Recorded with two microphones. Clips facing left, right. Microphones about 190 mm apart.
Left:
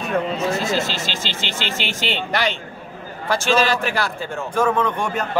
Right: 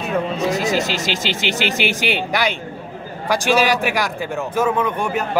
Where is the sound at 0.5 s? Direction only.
15° right (ahead or behind).